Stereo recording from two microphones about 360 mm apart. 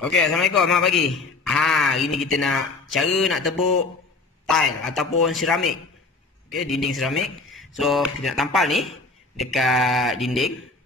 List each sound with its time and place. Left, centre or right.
0.0 s a man's voice: centre